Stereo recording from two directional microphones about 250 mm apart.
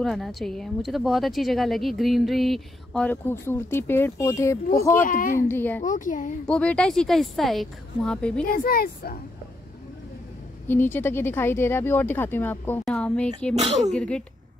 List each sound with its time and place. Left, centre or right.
0.0 s speech: centre
5.0 s speech: left
5.5 s speech: centre
5.8 s speech: left
6.4 s speech: centre
8.5 s speech: left
10.7 s speech: centre